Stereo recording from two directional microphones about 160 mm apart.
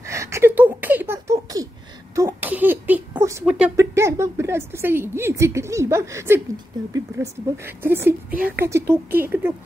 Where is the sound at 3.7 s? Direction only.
15° right (ahead or behind).